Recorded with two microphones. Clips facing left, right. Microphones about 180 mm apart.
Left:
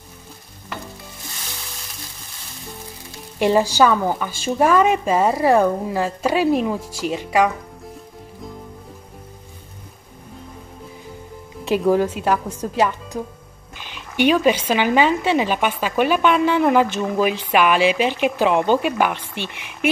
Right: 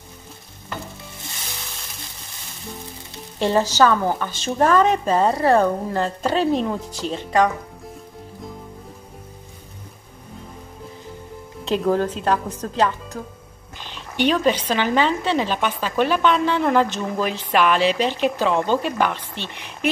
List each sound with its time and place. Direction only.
3.3 s speech: 15° left (ahead or behind)
11.6 s speech: 10° left (ahead or behind)